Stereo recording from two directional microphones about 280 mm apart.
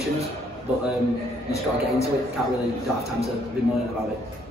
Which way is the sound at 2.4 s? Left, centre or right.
Centre.